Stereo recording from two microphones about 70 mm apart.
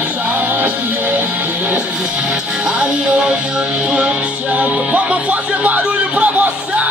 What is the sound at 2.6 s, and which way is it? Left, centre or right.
Music, centre.